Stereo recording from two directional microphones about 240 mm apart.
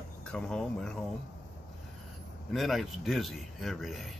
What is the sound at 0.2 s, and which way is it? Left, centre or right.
Speech, centre.